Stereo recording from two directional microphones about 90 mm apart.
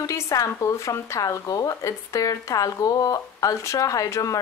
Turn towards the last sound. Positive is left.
turn(degrees=40)  # may be behind; listen again after turning